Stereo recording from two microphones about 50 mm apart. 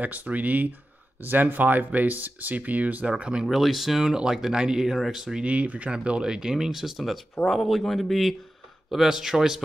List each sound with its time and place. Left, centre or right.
0.0 s speech: right
3.4 s speech: centre
5.4 s speech: right; by 9.6 s centre